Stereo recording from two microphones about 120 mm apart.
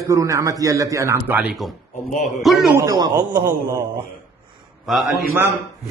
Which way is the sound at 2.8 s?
35° right (ahead or behind).